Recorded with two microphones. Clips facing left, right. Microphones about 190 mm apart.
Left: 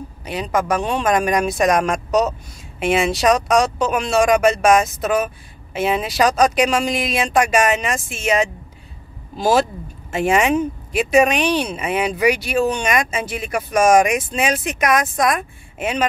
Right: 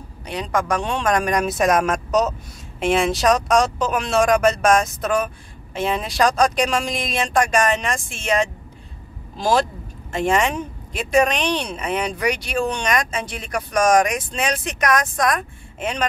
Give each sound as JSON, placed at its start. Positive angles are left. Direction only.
{"t": 0.2, "sound": "speech", "side_deg": 5}